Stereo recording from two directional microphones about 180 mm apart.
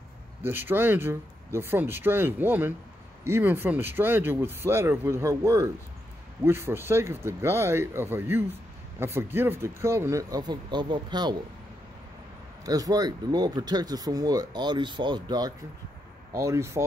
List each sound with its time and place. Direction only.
0.4 s speech: 10° right (ahead or behind)
12.6 s speech: 20° right (ahead or behind)